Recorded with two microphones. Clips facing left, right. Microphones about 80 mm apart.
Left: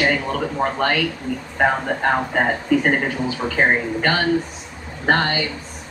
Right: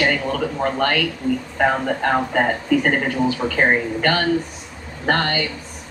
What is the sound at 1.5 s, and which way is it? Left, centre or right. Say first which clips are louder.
Speech: left 2 dB; left.